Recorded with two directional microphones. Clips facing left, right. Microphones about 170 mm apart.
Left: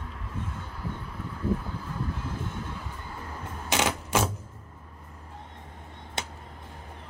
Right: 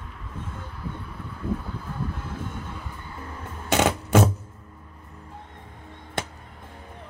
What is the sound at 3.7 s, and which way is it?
Music, 55° right (ahead or behind).